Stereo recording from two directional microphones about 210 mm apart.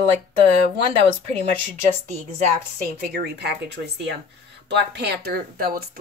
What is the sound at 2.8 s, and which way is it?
Speech, 45° right (ahead or behind).